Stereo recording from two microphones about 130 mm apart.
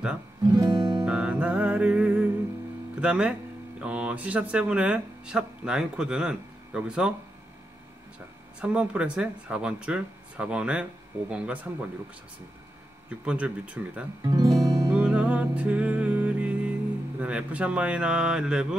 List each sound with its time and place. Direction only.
0.5 s music: 30° right (ahead or behind)
1.0 s music: 10° right (ahead or behind)
3.0 s speech: 10° right (ahead or behind)
8.5 s speech: 10° right (ahead or behind)
13.1 s speech: 10° right (ahead or behind)
14.2 s speech: 30° right (ahead or behind)
14.6 s music: 30° right (ahead or behind)
14.9 s music: 10° right (ahead or behind)
17.2 s speech: 10° right (ahead or behind)